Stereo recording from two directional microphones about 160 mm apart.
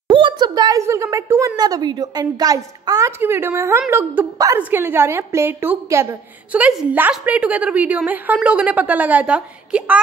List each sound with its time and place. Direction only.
0.1 s a woman's voice: 30° right (ahead or behind); by 9.9 s 5° right (ahead or behind)